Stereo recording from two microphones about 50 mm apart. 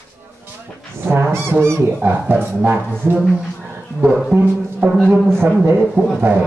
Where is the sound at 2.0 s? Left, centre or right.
Right.